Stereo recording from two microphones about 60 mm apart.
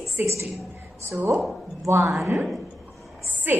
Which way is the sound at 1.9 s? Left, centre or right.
Right.